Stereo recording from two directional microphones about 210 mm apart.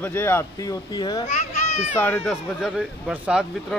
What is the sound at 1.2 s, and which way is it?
Speech, 35° left (ahead or behind).